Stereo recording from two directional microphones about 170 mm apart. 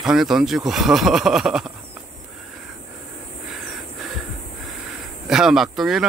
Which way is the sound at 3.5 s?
Centre (ahead or behind).